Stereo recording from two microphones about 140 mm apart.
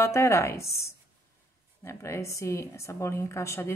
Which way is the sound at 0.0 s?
20° left (ahead or behind).